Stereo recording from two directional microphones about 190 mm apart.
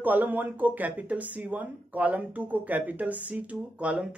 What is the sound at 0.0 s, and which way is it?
Speech, 10° right (ahead or behind).